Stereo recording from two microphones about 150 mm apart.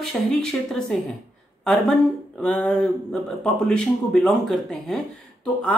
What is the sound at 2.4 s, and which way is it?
Speech, 10° left (ahead or behind).